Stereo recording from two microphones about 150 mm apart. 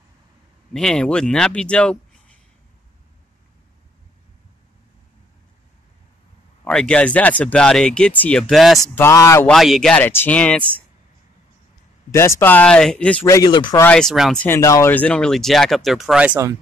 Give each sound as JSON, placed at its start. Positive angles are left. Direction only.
{"t": 0.7, "sound": "speech", "side_deg": 5}
{"t": 6.6, "sound": "speech", "side_deg": 5}
{"t": 8.9, "sound": "speech", "side_deg": 20}
{"t": 9.5, "sound": "speech", "side_deg": 0}
{"t": 12.1, "sound": "speech", "side_deg": 20}
{"t": 13.3, "sound": "speech", "side_deg": 30}
{"t": 13.9, "sound": "speech", "side_deg": 0}
{"t": 14.4, "sound": "speech", "side_deg": 20}